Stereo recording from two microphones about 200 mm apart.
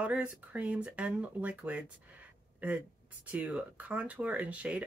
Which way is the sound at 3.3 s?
5° right (ahead or behind).